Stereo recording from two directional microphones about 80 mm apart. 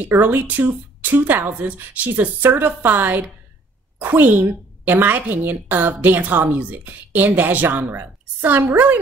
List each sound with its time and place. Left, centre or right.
0.1 s a woman's voice: right